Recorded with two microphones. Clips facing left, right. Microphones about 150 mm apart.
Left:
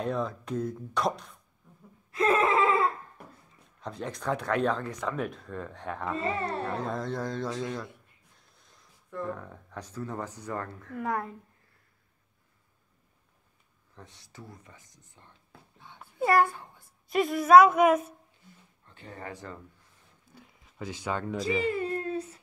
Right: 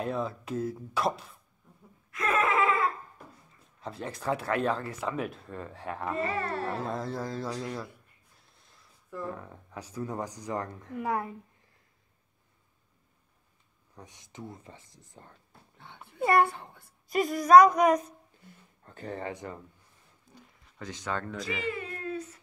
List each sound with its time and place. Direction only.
0.0 s speech: 5° right (ahead or behind)
2.0 s a sound: 30° left (ahead or behind)
3.8 s speech: 5° right (ahead or behind)
6.1 s speech: 25° left (ahead or behind)
6.6 s speech: centre (ahead or behind); by 11.0 s 20° right (ahead or behind)
11.0 s speech: 5° right (ahead or behind)
13.9 s speech: 15° right (ahead or behind); by 15.3 s 35° right (ahead or behind)
15.8 s a sound: 65° right (ahead or behind)
16.2 s a child's voice: centre (ahead or behind)
18.9 s speech: 40° right (ahead or behind)
19.2 s speech: 20° right (ahead or behind)
20.3 s speech: 5° left (ahead or behind)
21.5 s speech: 35° left (ahead or behind)